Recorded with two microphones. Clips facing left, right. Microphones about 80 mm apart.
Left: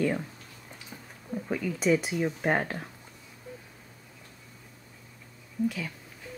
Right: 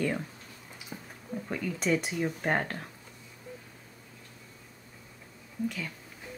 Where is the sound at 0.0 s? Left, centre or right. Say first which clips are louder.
Left 3 dB; centre.